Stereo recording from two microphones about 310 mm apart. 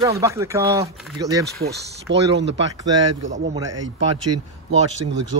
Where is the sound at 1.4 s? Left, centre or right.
Right.